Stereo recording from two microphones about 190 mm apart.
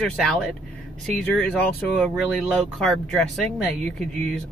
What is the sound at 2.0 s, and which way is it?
Speech, centre (ahead or behind).